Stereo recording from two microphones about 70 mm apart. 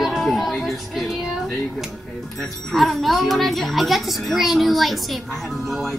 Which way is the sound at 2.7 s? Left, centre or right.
Centre.